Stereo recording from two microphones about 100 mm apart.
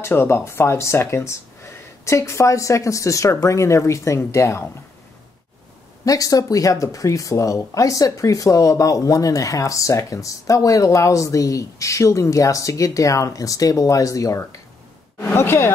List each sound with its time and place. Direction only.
0.0 s speech: 25° left (ahead or behind)
6.0 s speech: 35° left (ahead or behind)